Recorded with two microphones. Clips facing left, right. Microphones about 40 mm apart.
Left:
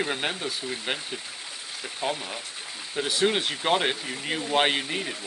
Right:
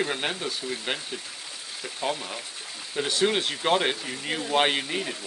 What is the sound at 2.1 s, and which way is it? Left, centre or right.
Speech, left.